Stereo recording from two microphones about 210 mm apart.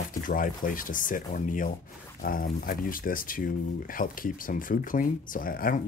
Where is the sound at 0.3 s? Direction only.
40° left (ahead or behind).